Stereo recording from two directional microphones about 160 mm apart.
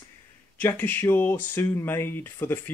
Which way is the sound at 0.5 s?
10° left (ahead or behind).